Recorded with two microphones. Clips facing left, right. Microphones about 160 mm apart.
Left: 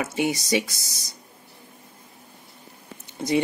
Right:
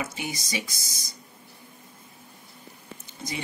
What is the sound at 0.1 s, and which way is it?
Speech, 70° left (ahead or behind).